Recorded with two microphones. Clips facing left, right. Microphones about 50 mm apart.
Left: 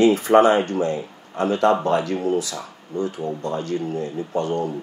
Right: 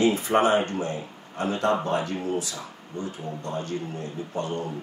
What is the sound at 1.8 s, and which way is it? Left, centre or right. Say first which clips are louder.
Speech: left 6 dB; left.